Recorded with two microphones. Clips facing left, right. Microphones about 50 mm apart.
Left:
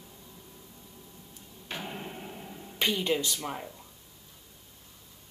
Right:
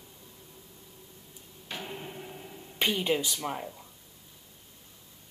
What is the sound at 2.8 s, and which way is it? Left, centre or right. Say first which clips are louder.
Speech: even; centre.